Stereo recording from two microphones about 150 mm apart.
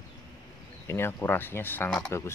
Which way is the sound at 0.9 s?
15° left (ahead or behind).